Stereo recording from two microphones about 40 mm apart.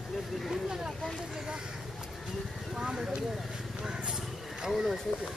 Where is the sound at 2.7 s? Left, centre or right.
Centre.